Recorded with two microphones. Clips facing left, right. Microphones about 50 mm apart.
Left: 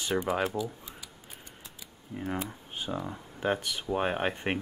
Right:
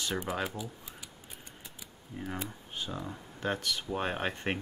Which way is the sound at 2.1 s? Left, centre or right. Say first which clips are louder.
Left 4 dB; centre.